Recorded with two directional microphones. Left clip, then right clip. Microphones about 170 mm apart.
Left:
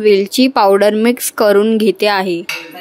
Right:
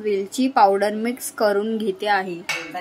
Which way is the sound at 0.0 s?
55° left (ahead or behind).